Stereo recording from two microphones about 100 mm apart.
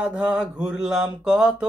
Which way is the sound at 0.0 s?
10° right (ahead or behind).